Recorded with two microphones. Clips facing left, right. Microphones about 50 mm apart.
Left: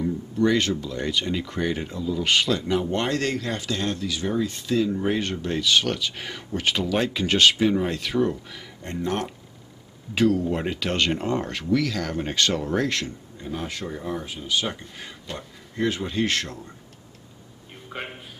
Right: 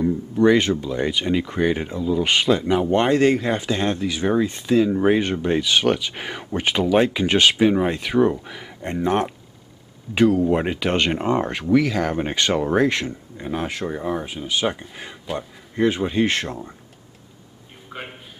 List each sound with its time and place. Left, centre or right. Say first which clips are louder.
0.0 s speech: right 5 dB; right
10.1 s speech: right 5 dB; centre; by 14.3 s right
14.3 s speech: right 4 dB; centre
17.9 s a sound: even; centre